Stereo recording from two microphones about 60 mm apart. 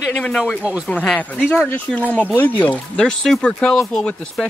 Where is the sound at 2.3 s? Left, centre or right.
Left.